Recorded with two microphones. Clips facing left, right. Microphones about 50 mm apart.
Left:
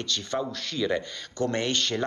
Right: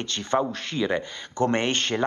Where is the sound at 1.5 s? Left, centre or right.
Right.